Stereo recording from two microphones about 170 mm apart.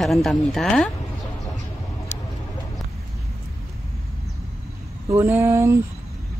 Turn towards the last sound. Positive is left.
turn(degrees=-15)  # may be behind; listen again after turning